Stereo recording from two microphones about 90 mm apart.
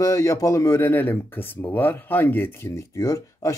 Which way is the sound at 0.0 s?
35° left (ahead or behind).